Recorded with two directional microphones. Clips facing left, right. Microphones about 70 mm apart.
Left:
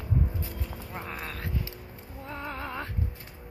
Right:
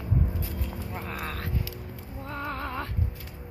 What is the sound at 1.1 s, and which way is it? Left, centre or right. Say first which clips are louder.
Vehicle: right 2 dB; right.